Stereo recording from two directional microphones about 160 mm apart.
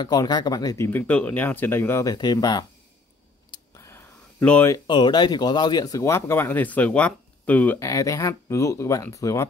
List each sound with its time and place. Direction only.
0.0 s speech: 25° left (ahead or behind)
0.8 s speech: 10° left (ahead or behind)
2.1 s speech: 25° left (ahead or behind)
3.5 s a sound: 15° left (ahead or behind)
4.7 s speech: 25° left (ahead or behind)